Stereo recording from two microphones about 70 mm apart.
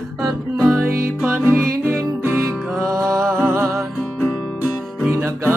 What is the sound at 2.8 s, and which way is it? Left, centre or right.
Music, right.